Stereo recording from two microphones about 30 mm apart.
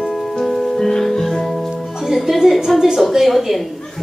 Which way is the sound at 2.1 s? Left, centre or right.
Centre.